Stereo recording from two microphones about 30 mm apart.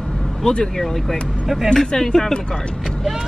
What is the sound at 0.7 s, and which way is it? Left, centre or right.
Speech, centre.